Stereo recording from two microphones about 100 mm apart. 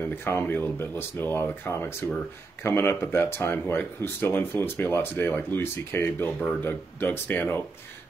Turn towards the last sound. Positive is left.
turn(degrees=20)  # may be behind; listen again after turning